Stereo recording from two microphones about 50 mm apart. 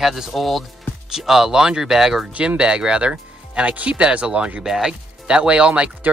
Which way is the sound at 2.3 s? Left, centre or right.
Right.